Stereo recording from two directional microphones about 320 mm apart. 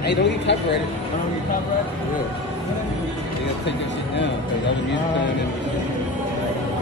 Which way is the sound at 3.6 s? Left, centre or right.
Left.